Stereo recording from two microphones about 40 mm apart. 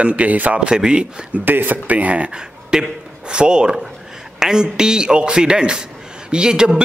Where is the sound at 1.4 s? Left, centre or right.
Right.